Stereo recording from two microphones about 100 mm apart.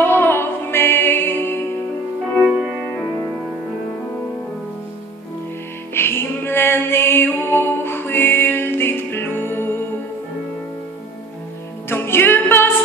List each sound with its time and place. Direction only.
0.0 s music: 20° left (ahead or behind)
5.9 s music: 25° left (ahead or behind)
11.9 s music: 20° left (ahead or behind)